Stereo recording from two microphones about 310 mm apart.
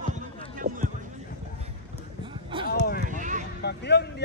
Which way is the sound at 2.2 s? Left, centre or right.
Centre.